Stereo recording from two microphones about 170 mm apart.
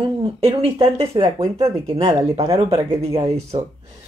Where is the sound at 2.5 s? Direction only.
25° right (ahead or behind).